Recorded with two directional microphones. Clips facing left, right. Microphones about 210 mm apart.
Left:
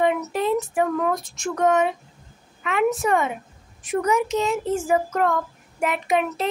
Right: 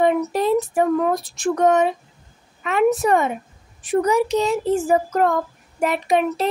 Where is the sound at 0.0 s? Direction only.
40° right (ahead or behind).